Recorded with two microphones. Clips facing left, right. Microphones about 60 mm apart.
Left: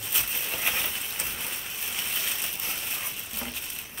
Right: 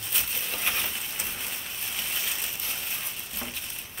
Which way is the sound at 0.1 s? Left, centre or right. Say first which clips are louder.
Left 1 dB; centre.